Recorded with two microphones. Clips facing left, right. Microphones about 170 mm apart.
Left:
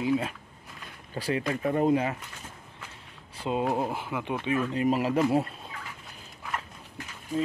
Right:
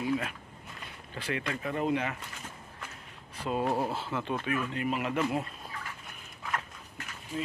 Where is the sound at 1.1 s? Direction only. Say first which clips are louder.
Left 5 dB; 35° left (ahead or behind).